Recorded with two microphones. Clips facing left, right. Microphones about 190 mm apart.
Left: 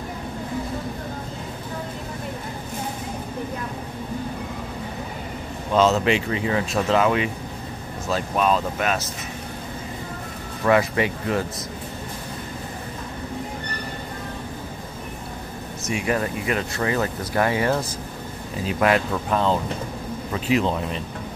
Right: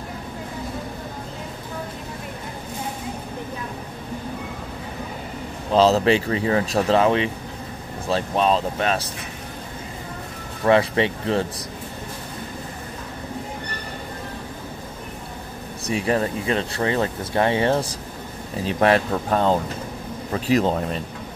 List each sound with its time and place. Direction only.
5.7 s speech: 35° right (ahead or behind)
10.6 s speech: 30° right (ahead or behind)
15.9 s speech: 35° right (ahead or behind)